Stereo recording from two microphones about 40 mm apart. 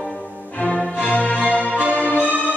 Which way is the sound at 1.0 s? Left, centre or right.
Left.